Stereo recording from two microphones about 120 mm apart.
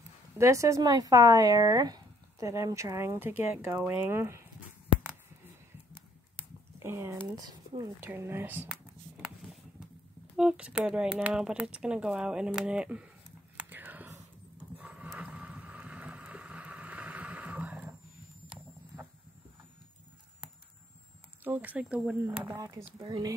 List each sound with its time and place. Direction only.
0.4 s speech: 25° right (ahead or behind)
5.9 s a sound: 20° right (ahead or behind)
7.3 s speech: 30° right (ahead or behind)
8.0 s speech: 20° right (ahead or behind)
8.6 s a sound: centre (ahead or behind)
10.3 s speech: 5° right (ahead or behind)
13.6 s whispering: 15° right (ahead or behind)
14.8 s a sound: 10° right (ahead or behind)
15.0 s vehicle: 10° right (ahead or behind)
21.5 s speech: 10° right (ahead or behind)
22.5 s speech: 25° right (ahead or behind)